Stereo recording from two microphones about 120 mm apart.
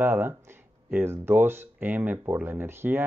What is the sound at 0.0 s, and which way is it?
Speech, 20° right (ahead or behind).